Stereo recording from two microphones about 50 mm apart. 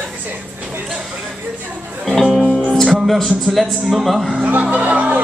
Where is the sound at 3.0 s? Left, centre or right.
Centre.